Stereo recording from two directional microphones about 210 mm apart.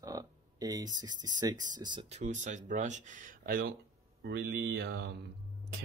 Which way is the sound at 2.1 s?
35° right (ahead or behind).